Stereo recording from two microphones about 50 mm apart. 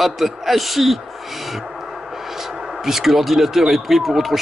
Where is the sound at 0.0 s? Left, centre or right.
Centre.